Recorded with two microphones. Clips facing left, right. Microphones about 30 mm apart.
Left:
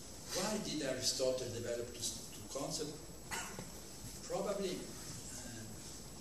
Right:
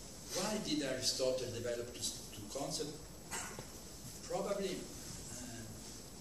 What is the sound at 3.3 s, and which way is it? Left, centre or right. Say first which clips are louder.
Dog: left 2 dB; left.